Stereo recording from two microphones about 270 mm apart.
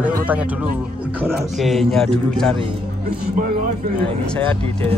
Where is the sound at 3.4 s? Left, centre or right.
Right.